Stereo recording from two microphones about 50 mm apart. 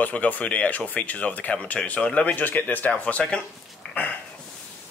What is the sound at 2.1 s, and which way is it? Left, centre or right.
Speech, left.